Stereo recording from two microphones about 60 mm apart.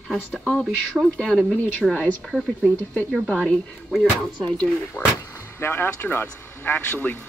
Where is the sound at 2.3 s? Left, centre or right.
Centre.